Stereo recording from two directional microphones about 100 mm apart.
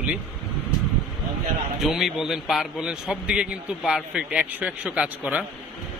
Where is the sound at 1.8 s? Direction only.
Centre (ahead or behind).